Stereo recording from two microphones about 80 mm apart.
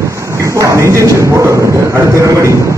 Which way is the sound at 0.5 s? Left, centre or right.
Right.